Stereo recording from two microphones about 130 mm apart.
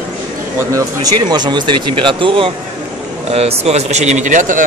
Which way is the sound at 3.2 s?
50° right (ahead or behind).